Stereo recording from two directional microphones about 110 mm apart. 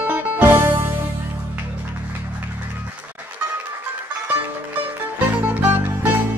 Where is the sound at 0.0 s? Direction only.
15° right (ahead or behind).